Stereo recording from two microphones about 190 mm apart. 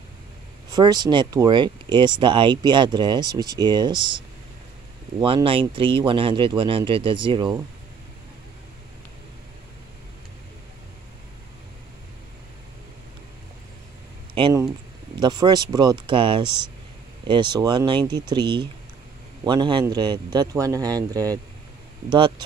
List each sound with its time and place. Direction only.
0.7 s speech: 20° right (ahead or behind)
5.2 s speech: 30° right (ahead or behind)
15.1 s speech: 20° right (ahead or behind)